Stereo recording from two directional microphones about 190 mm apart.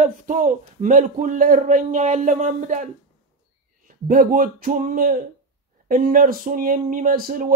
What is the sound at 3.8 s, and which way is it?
Speech, 45° right (ahead or behind).